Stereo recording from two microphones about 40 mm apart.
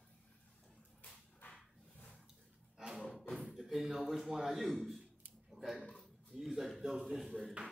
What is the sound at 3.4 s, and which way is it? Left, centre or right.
Speech, centre.